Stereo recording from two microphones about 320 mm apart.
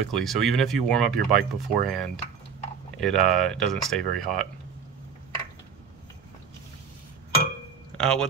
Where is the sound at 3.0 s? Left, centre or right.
Centre.